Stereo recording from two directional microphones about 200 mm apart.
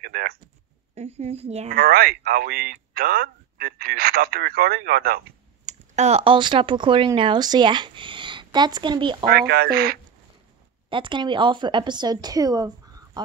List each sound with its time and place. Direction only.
0.0 s a sound: 50° right (ahead or behind)
0.9 s a woman's voice: 30° right (ahead or behind)
1.8 s speech: 50° right (ahead or behind)
5.7 s speech: 35° right (ahead or behind)
9.2 s speech: 50° right (ahead or behind)
10.9 s speech: 25° right (ahead or behind)